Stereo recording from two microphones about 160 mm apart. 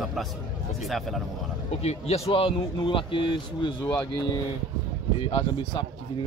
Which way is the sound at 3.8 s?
15° left (ahead or behind).